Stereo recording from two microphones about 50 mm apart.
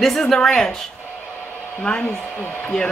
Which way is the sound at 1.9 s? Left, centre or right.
Centre.